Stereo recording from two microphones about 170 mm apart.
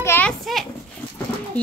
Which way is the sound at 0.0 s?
15° left (ahead or behind).